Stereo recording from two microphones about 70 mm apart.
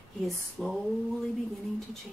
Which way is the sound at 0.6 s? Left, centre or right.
Centre.